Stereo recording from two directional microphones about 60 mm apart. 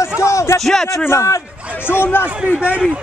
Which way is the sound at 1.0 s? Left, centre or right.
Left.